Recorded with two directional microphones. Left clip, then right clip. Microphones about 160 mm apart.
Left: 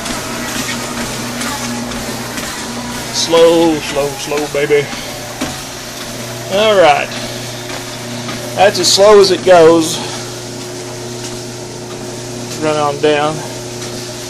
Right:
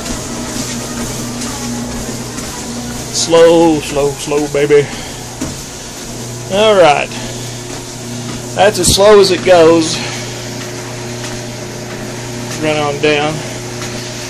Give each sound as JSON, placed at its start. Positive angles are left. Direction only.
{"t": 3.2, "sound": "speech", "side_deg": -15}
{"t": 6.5, "sound": "speech", "side_deg": -10}
{"t": 8.5, "sound": "speech", "side_deg": -10}
{"t": 12.6, "sound": "speech", "side_deg": 5}